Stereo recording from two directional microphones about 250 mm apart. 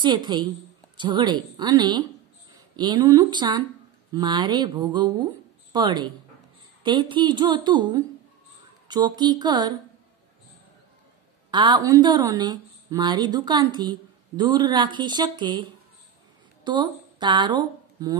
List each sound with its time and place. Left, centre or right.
0.0 s speech: centre
11.5 s speech: centre